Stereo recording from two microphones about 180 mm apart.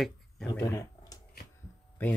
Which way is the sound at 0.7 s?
20° left (ahead or behind).